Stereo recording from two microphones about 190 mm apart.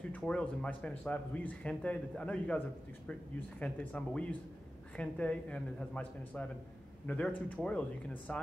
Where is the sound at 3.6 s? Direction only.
5° left (ahead or behind).